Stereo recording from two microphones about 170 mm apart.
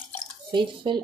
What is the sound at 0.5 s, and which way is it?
Speech, 30° right (ahead or behind).